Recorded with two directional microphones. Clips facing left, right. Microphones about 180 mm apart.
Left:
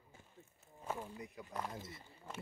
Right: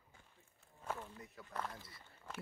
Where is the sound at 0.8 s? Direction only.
15° left (ahead or behind).